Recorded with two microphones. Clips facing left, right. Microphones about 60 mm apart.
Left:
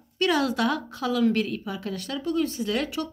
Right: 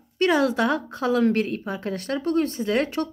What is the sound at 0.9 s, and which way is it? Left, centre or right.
A woman's voice, right.